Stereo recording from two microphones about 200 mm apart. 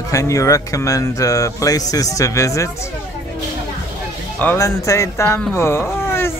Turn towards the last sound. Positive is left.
turn(degrees=10)  # may be behind; listen again after turning